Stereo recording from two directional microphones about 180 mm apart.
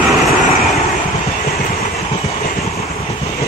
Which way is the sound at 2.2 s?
35° left (ahead or behind).